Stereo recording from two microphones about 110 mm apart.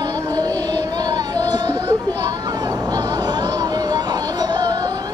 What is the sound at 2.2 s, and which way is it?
Music, 35° right (ahead or behind).